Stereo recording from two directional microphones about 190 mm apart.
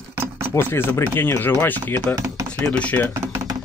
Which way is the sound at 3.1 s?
15° right (ahead or behind).